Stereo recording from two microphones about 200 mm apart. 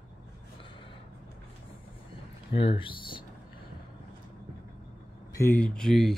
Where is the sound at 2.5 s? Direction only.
25° left (ahead or behind).